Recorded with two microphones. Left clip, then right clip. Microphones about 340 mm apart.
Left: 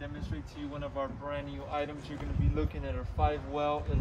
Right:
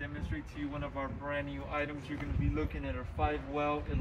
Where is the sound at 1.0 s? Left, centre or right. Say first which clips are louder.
Left 2 dB; centre.